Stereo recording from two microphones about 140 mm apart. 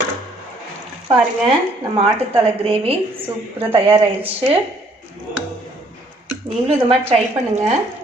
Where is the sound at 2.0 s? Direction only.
40° right (ahead or behind).